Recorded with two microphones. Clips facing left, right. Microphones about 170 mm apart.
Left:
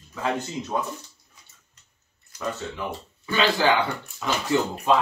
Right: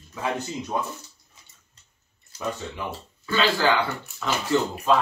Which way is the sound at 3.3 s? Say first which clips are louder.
Left 1 dB; 20° left (ahead or behind).